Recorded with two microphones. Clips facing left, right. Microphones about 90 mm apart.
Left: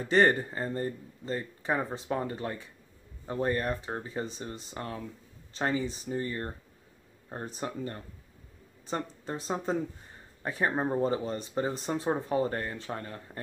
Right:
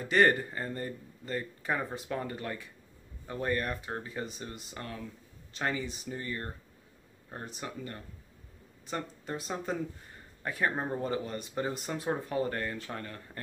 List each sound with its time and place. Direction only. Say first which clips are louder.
0.0 s speech: left 1 dB; 30° left (ahead or behind)